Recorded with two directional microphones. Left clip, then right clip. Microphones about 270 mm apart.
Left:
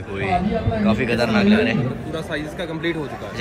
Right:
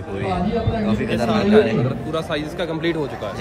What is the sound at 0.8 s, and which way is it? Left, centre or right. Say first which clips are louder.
A man's voice: left 2 dB; centre.